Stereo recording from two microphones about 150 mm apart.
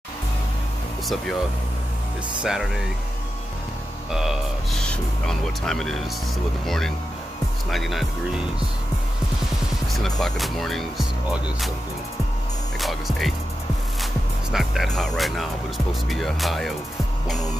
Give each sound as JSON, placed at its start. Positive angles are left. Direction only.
{"t": 1.0, "sound": "speech", "side_deg": 0}
{"t": 2.4, "sound": "speech", "side_deg": 0}
{"t": 4.1, "sound": "speech", "side_deg": -5}
{"t": 10.2, "sound": "speech", "side_deg": 0}
{"t": 12.8, "sound": "speech", "side_deg": 0}
{"t": 14.5, "sound": "speech", "side_deg": 0}